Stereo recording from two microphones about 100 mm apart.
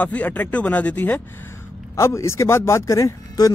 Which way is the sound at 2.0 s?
30° left (ahead or behind).